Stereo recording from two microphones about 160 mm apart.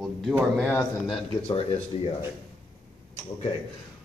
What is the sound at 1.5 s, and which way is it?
Speech, 35° left (ahead or behind).